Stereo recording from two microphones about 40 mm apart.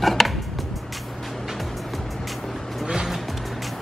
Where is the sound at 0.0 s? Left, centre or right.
Centre.